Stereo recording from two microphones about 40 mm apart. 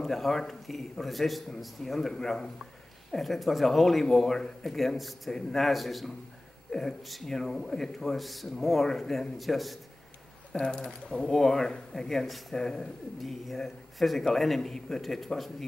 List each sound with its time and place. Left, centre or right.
0.0 s speech: centre
10.5 s speech: left
13.2 s speech: centre